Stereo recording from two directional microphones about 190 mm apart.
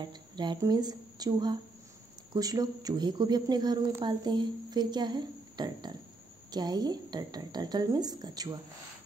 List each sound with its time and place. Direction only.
0.0 s a woman's voice: 25° right (ahead or behind)